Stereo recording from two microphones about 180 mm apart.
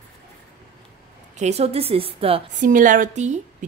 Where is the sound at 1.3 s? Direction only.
40° right (ahead or behind).